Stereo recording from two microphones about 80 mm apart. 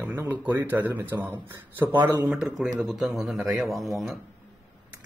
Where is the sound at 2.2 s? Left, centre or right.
Centre.